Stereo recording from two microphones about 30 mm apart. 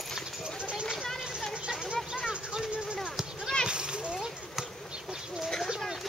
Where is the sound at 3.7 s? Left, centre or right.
Right.